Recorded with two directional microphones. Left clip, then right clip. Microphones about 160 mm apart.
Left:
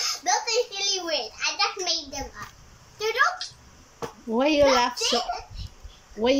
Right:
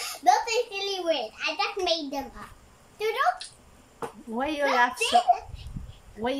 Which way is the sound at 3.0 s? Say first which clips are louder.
Left 2 dB; 20° right (ahead or behind).